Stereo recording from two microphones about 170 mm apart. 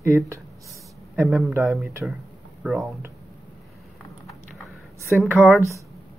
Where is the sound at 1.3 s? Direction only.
Centre (ahead or behind).